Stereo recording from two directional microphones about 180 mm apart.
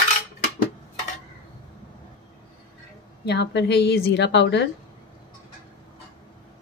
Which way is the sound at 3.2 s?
70° left (ahead or behind).